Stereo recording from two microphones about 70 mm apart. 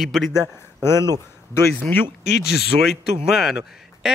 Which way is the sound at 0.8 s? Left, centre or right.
Left.